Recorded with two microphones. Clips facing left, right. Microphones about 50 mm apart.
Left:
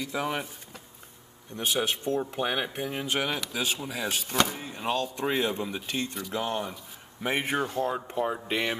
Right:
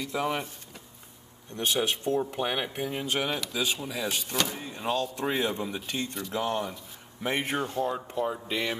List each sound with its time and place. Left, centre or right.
0.0 s speech: centre
1.6 s speech: centre; by 8.7 s left